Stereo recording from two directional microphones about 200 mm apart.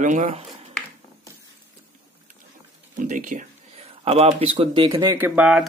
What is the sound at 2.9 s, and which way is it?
Speech, 40° right (ahead or behind).